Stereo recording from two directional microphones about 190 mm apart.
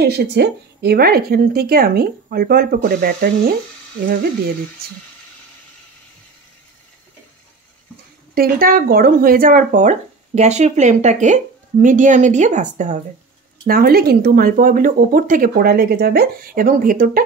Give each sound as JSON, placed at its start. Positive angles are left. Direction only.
{"t": 0.0, "sound": "speech", "side_deg": -60}
{"t": 4.8, "sound": "speech", "side_deg": -55}
{"t": 8.4, "sound": "speech", "side_deg": -50}
{"t": 13.7, "sound": "speech", "side_deg": -55}